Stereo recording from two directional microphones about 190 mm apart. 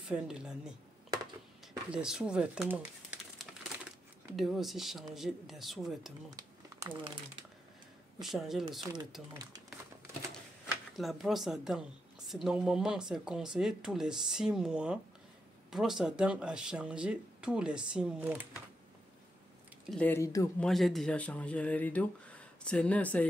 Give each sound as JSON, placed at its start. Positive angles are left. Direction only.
{"t": 0.1, "sound": "speech", "side_deg": -5}
{"t": 1.9, "sound": "speech", "side_deg": -5}
{"t": 6.3, "sound": "a sound", "side_deg": -20}
{"t": 8.2, "sound": "speech", "side_deg": 0}
{"t": 10.3, "sound": "a sound", "side_deg": 0}
{"t": 12.3, "sound": "speech", "side_deg": 0}
{"t": 19.9, "sound": "speech", "side_deg": 10}
{"t": 20.6, "sound": "speech", "side_deg": 0}